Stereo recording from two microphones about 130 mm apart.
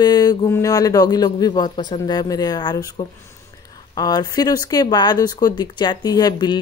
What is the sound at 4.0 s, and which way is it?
Speech, 30° left (ahead or behind).